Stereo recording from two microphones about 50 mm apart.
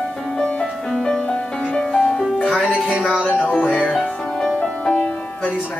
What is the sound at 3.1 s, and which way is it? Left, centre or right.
Music, right.